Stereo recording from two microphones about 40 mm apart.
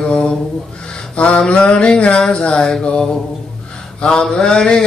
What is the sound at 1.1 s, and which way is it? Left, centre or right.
Mantra, left.